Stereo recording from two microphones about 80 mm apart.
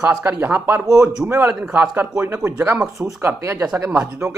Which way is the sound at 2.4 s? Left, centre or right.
Right.